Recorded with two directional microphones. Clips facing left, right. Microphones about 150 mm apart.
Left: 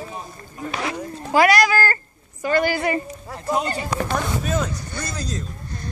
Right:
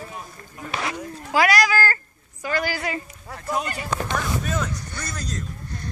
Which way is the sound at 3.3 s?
25° left (ahead or behind).